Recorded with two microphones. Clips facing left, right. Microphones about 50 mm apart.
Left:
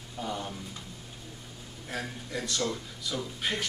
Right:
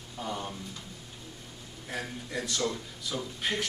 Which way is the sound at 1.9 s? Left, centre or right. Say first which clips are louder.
Even; centre.